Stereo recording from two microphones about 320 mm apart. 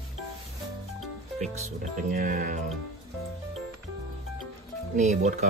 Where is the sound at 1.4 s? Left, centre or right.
Right.